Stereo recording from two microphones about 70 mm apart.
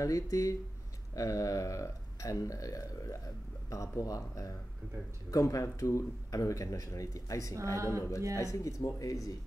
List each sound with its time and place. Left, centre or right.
0.0 s speech: left
7.7 s speech: right
8.4 s speech: left